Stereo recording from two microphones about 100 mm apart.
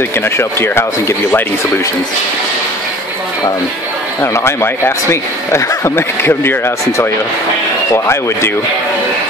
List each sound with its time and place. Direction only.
0.2 s speech: 25° left (ahead or behind)
4.2 s speech: 25° left (ahead or behind)